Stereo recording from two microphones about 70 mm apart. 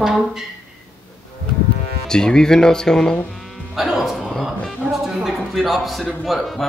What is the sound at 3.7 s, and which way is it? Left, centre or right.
Speech, centre.